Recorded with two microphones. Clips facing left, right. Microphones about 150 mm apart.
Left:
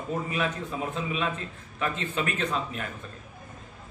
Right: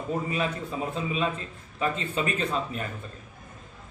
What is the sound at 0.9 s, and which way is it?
A man's voice, 35° right (ahead or behind).